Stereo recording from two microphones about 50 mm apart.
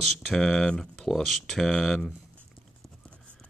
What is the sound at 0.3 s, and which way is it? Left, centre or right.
Speech, centre.